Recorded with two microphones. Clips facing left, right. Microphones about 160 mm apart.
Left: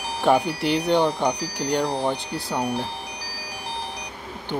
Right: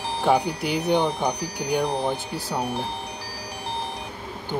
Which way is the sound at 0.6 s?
5° right (ahead or behind).